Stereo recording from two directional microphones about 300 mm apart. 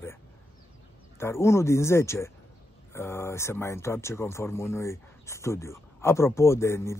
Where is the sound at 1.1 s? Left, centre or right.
Centre.